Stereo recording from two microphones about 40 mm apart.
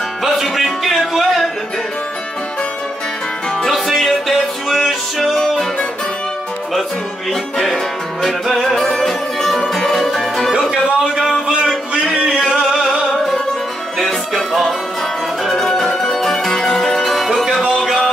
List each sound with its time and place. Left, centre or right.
0.2 s music: centre
3.6 s music: centre
7.5 s music: centre
11.4 s a sound: centre
12.4 s music: centre
13.9 s music: centre
15.4 s music: centre